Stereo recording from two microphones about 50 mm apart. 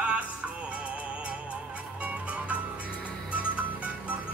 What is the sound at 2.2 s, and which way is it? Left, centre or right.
Music, right.